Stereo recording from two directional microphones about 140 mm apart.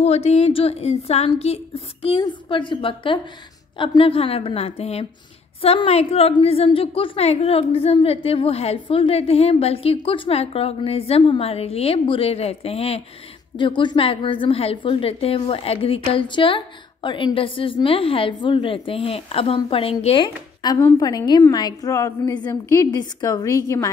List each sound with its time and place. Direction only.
0.0 s a woman's voice: 50° left (ahead or behind)
13.6 s a woman's voice: 35° left (ahead or behind)
20.8 s a woman's voice: 25° left (ahead or behind)